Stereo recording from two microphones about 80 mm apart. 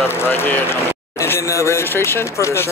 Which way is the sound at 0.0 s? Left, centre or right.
Left.